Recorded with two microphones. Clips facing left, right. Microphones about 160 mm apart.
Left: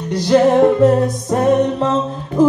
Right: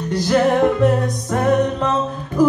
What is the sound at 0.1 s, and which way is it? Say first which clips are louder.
Music: left 4 dB; 25° left (ahead or behind).